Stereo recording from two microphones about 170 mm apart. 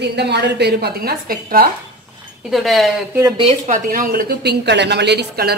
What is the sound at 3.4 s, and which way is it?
Speech, 35° right (ahead or behind).